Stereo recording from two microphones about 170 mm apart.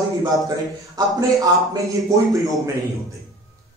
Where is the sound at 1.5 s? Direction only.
20° right (ahead or behind).